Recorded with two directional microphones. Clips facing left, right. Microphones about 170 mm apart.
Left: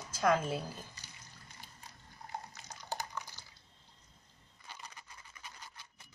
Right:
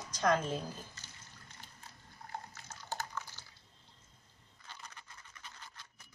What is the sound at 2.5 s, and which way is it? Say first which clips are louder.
Dog: left 1 dB; 15° left (ahead or behind).